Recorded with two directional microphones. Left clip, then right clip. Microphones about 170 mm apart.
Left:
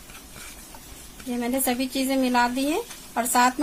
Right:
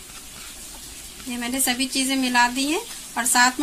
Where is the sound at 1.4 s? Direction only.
60° left (ahead or behind).